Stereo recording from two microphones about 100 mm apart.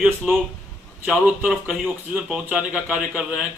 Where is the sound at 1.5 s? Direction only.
5° right (ahead or behind).